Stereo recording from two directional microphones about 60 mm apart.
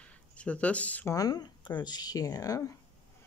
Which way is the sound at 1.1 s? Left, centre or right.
Left.